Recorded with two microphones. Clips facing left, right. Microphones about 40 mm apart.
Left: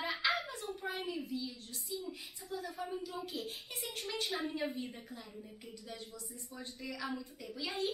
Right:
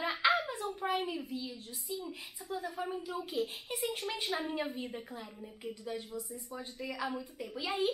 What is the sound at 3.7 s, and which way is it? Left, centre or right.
Speech, centre.